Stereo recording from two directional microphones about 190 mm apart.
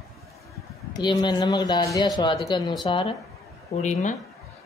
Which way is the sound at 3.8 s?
40° left (ahead or behind).